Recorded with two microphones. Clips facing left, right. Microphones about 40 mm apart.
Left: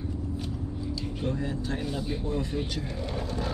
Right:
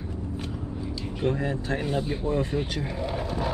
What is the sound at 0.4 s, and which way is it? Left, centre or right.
Speech, right.